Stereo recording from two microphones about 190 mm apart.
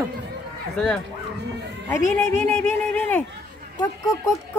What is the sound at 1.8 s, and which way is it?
Speech, 10° left (ahead or behind).